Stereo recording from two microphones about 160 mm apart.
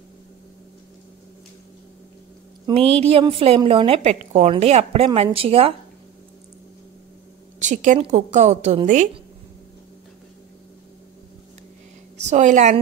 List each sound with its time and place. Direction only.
2.7 s a woman's voice: 40° right (ahead or behind)
7.5 s a woman's voice: 50° right (ahead or behind)
12.3 s a woman's voice: 50° right (ahead or behind)